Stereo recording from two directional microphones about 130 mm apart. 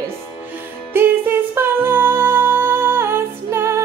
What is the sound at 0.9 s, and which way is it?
Music, 15° right (ahead or behind).